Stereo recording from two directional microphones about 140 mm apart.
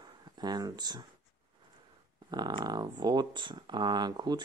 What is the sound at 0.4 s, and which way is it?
Speech, 30° right (ahead or behind).